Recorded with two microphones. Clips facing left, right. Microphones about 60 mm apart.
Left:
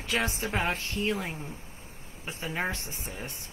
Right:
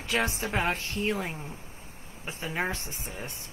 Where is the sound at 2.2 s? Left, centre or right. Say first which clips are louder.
Right 1 dB; right.